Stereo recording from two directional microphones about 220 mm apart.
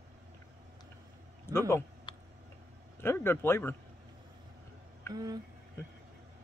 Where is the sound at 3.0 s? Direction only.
10° left (ahead or behind).